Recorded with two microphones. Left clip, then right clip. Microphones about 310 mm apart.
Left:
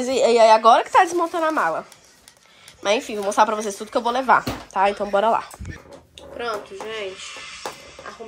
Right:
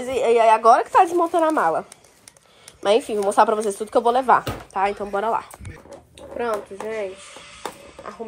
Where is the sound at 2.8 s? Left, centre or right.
Centre.